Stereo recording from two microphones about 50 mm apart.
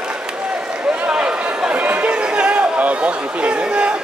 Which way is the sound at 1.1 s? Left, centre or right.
Centre.